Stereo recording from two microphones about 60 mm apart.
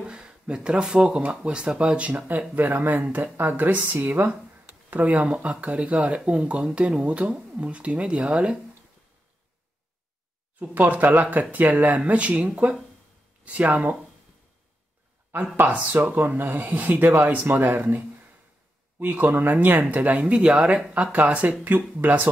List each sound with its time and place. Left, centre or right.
0.0 s speech: centre
10.6 s speech: right
11.7 s speech: right
12.0 s speech: right
15.3 s speech: right
20.9 s speech: right